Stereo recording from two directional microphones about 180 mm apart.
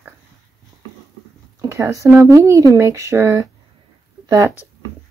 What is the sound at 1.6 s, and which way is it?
Speech, 20° right (ahead or behind).